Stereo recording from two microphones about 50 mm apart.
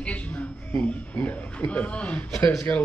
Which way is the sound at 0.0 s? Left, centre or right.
Left.